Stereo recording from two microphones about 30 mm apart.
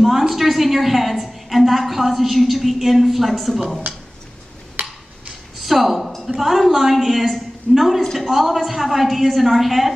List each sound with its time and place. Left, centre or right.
0.0 s a woman's voice: centre
4.8 s tick-tock: right
5.6 s a sound: centre
6.2 s a woman's voice: centre